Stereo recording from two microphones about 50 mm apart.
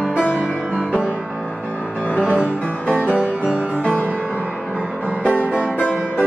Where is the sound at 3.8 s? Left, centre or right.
Left.